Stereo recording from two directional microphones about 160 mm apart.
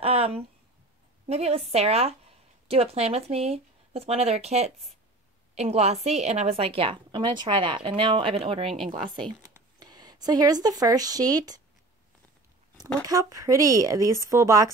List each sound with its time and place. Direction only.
0.0 s a woman's voice: 40° right (ahead or behind)
13.0 s speech: 20° right (ahead or behind)